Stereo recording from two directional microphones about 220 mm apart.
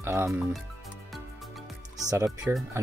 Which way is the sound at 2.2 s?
Centre (ahead or behind).